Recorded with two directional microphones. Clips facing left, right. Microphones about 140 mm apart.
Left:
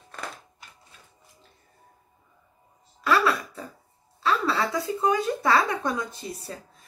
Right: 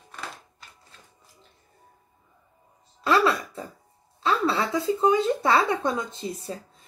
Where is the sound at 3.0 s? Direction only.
25° right (ahead or behind).